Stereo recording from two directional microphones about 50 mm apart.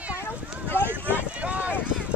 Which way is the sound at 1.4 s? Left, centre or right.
Right.